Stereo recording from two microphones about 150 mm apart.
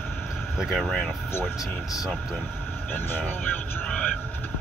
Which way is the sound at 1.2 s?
15° left (ahead or behind).